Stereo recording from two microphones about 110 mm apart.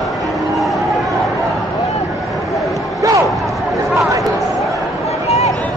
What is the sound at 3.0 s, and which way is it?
Music, 30° right (ahead or behind).